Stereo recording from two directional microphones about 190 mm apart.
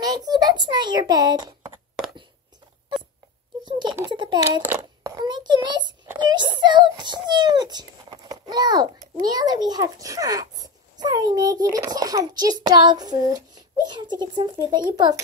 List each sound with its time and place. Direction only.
0.0 s a child's voice: 20° right (ahead or behind)
3.9 s a child's voice: 20° right (ahead or behind)
4.6 s a child's voice: 10° right (ahead or behind)
5.2 s a child's voice: 25° right (ahead or behind)